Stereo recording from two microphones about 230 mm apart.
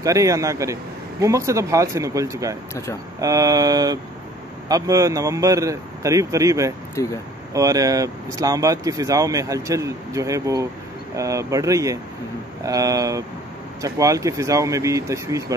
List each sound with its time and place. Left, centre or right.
0.0 s speech: centre
7.0 s speech: centre
7.5 s speech: centre